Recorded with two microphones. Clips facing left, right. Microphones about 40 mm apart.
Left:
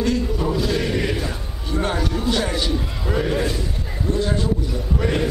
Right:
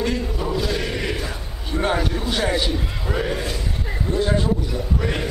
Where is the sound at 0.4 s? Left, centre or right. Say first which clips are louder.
Left 2 dB; centre.